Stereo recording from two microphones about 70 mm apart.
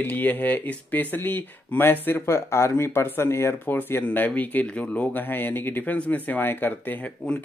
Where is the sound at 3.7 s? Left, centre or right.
Left.